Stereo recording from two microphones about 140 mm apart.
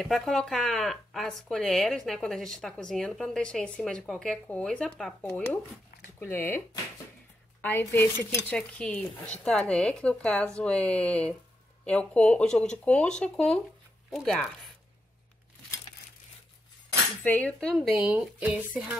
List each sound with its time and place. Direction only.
0.0 s speech: 5° left (ahead or behind)
5.2 s speech: 15° left (ahead or behind)
7.6 s speech: 15° left (ahead or behind)
17.2 s speech: 10° left (ahead or behind); by 18.9 s 10° right (ahead or behind)